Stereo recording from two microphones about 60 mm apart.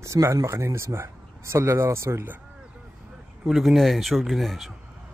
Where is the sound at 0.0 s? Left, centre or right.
Right.